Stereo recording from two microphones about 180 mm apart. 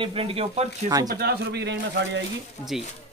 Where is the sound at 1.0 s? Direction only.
55° right (ahead or behind); by 2.2 s 85° right.